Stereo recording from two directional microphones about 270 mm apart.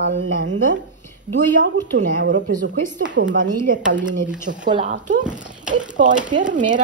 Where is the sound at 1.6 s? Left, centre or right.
Right.